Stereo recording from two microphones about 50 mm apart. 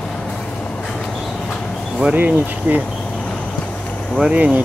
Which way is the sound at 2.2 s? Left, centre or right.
Right.